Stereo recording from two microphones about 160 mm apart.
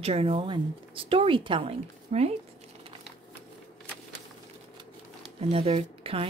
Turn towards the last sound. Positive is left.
turn(degrees=-35)  # may be behind; listen again after turning